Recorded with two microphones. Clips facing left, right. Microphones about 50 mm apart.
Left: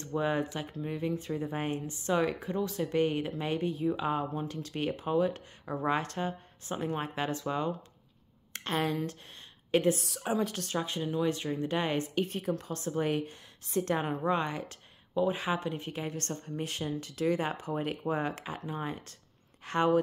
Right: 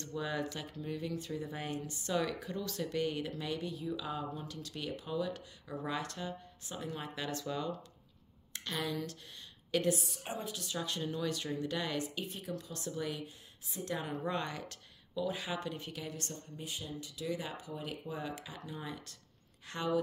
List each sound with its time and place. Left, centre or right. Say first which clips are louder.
0.0 s speech: left 7 dB; left
10.0 s a woman's voice: left 10 dB; left
10.5 s speech: left 6 dB; left
11.0 s speech: left 8 dB; centre
11.2 s speech: left 5 dB; left
12.2 s speech: left 9 dB; left
13.8 s speech: left 4 dB; left
14.2 s speech: left 7 dB; left